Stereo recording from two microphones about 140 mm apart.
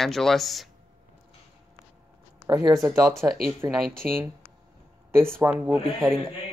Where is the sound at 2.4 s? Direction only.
25° right (ahead or behind).